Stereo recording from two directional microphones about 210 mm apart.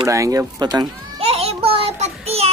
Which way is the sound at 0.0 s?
15° right (ahead or behind).